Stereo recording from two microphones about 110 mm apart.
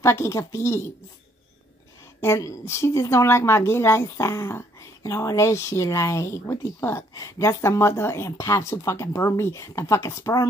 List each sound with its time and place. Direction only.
0.0 s a woman's voice: 25° left (ahead or behind)
2.2 s a woman's voice: 25° left (ahead or behind)